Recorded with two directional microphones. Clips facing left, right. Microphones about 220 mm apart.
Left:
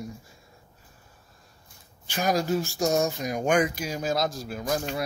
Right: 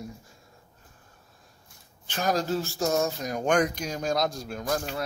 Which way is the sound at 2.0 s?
10° left (ahead or behind).